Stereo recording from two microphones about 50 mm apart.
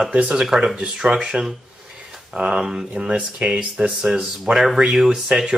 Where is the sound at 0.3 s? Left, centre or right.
Centre.